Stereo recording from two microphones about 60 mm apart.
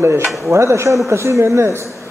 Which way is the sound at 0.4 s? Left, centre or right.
Right.